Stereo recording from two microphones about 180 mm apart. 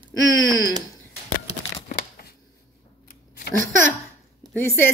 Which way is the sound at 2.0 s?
60° left (ahead or behind).